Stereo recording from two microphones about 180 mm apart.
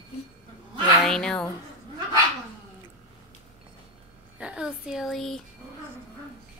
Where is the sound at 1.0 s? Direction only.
5° left (ahead or behind).